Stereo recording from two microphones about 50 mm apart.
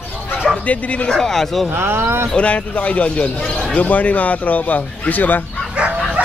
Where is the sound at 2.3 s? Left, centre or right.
Left.